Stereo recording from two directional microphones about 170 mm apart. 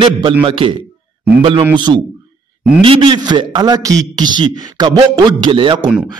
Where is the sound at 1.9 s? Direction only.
20° right (ahead or behind).